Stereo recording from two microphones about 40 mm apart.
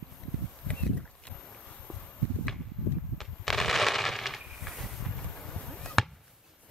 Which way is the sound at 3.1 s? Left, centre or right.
Centre.